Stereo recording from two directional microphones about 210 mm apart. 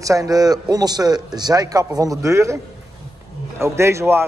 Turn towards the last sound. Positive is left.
turn(degrees=-10)  # may be behind; listen again after turning